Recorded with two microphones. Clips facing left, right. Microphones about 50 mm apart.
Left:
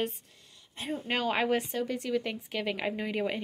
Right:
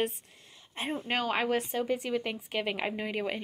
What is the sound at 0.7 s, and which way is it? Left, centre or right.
Speech, right.